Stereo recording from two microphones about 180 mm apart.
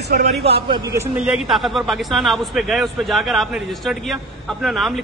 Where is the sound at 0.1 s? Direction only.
65° right (ahead or behind).